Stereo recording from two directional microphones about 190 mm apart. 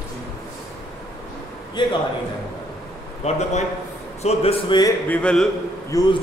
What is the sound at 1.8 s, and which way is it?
Speech, 25° left (ahead or behind).